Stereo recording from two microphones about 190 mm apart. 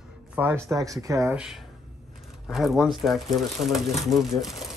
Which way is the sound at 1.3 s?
5° right (ahead or behind).